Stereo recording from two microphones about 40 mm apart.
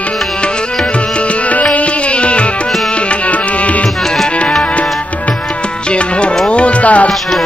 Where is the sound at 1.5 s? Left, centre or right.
Left.